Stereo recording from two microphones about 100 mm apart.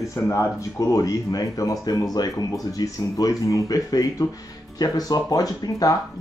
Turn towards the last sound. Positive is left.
turn(degrees=40)  # may be behind; listen again after turning